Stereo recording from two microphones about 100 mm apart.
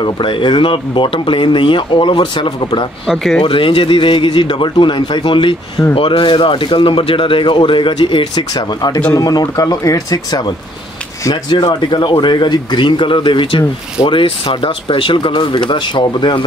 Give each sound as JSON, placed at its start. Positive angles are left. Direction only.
{"t": 0.0, "sound": "speech", "side_deg": 55}
{"t": 3.1, "sound": "speech", "side_deg": 0}
{"t": 3.4, "sound": "speech", "side_deg": 60}
{"t": 11.4, "sound": "speech", "side_deg": 50}